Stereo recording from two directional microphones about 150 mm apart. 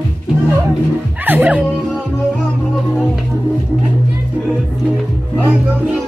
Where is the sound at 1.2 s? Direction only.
10° right (ahead or behind).